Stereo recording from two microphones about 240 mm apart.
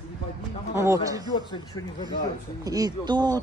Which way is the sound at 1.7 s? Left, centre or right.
Centre.